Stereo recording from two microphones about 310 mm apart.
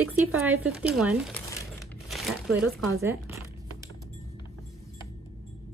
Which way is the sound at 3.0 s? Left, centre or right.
Centre.